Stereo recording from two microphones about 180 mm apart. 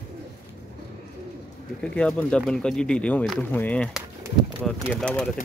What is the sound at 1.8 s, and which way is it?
Speech, 5° left (ahead or behind).